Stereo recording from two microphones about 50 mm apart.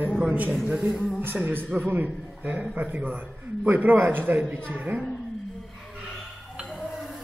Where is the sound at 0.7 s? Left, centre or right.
Right.